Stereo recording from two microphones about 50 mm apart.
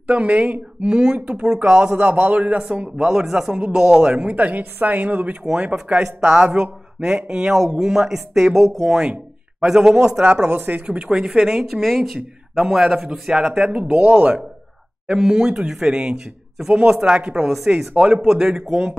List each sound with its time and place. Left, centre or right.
0.0 s speech: right
0.8 s speech: centre
5.9 s speech: centre
9.7 s speech: centre
13.5 s speech: centre
13.9 s speech: right
15.1 s speech: centre